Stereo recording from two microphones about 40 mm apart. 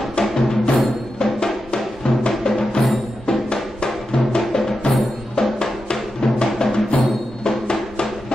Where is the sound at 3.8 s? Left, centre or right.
Left.